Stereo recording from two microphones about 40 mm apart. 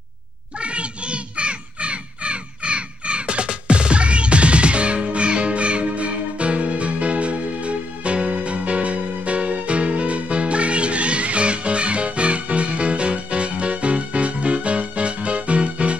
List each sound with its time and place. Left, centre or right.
0.6 s crow: right